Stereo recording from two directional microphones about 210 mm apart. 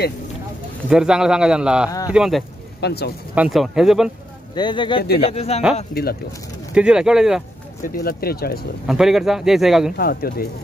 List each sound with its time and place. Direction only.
0.8 s speech: 5° right (ahead or behind)
1.9 s speech: 15° left (ahead or behind)
2.1 s speech: centre (ahead or behind)
2.8 s speech: 50° left (ahead or behind)
3.3 s speech: centre (ahead or behind)
4.6 s speech: 20° left (ahead or behind)
5.0 s speech: 50° left (ahead or behind)
5.3 s speech: 30° left (ahead or behind)
6.7 s speech: 5° right (ahead or behind)
7.8 s speech: 45° left (ahead or behind)
8.8 s speech: centre (ahead or behind)
9.9 s speech: 45° left (ahead or behind)